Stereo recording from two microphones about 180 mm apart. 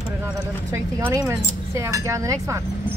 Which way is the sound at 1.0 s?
10° right (ahead or behind).